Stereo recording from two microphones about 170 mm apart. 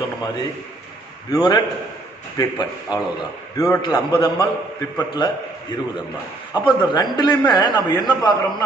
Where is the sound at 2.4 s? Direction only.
25° left (ahead or behind).